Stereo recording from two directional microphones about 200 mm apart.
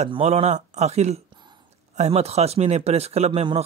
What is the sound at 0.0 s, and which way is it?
Speech, 30° right (ahead or behind).